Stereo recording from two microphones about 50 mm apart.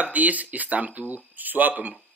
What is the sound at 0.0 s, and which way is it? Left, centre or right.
Speech, right.